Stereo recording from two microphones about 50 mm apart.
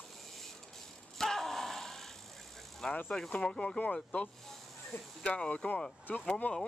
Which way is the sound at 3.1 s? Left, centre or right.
Centre.